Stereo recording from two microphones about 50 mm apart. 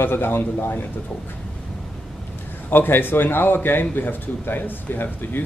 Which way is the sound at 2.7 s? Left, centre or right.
Left.